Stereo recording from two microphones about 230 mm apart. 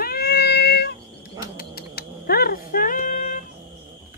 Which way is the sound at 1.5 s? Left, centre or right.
Left.